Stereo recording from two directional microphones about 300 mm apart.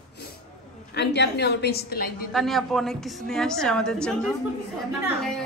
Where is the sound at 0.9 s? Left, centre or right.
Left.